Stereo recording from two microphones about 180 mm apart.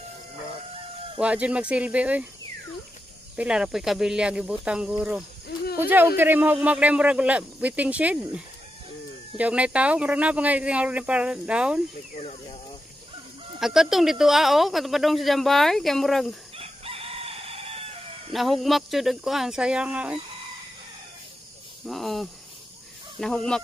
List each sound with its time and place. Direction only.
1.2 s speech: 5° right (ahead or behind)
3.3 s speech: 5° right (ahead or behind)
12.2 s speech: 35° left (ahead or behind)
13.6 s speech: centre (ahead or behind)
16.5 s chicken: 30° right (ahead or behind)
18.3 s speech: centre (ahead or behind)
21.8 s speech: centre (ahead or behind)